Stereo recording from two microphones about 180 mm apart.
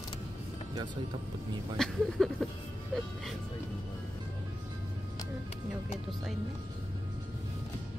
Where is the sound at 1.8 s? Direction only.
Centre (ahead or behind).